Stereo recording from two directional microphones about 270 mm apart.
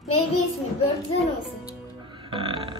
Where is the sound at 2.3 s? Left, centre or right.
Centre.